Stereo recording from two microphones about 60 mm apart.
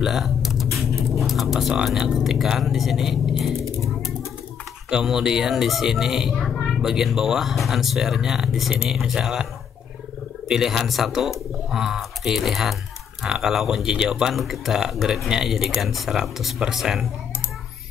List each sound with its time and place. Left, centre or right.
0.0 s typing: centre
1.2 s speech: centre
4.8 s speech: centre
10.5 s speech: centre